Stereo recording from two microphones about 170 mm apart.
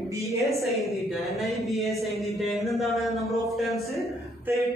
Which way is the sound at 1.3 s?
Centre (ahead or behind).